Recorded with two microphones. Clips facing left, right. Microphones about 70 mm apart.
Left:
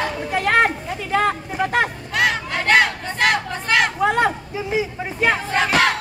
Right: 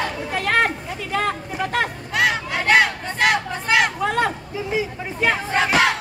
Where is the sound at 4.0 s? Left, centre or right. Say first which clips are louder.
Left 3 dB; left.